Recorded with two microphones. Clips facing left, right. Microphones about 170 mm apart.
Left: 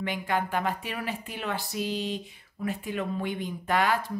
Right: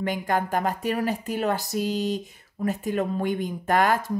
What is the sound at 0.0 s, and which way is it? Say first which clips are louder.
Speech: right 4 dB; 40° right (ahead or behind).